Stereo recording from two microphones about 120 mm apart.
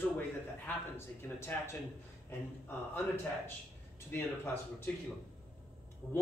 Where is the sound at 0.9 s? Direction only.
20° left (ahead or behind).